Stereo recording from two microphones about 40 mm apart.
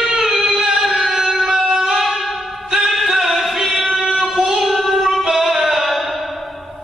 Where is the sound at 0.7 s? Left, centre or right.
Centre.